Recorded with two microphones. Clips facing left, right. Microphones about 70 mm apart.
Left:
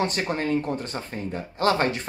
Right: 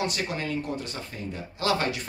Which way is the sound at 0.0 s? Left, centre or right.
Left.